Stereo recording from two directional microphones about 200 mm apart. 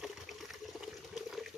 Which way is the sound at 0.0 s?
Centre (ahead or behind).